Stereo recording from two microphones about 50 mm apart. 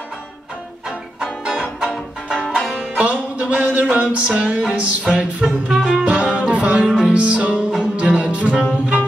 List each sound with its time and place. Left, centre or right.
2.4 s music: centre
2.8 s music: right
5.4 s music: centre
5.9 s music: right